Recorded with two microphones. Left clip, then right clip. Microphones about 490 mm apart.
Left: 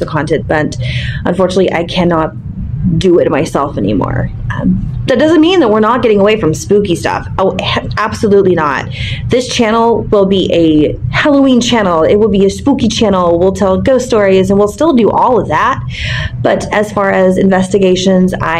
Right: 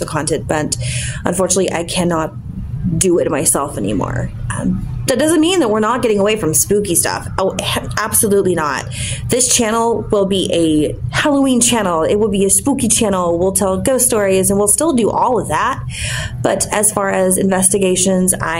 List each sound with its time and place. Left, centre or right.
0.0 s a woman's voice: right